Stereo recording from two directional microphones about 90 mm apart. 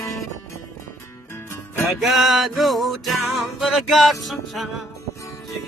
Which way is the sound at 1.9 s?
Centre (ahead or behind).